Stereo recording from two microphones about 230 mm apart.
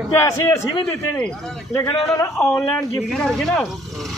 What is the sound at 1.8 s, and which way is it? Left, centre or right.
Speech, centre.